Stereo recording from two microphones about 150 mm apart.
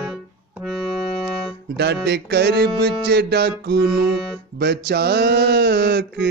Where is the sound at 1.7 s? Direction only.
90° right.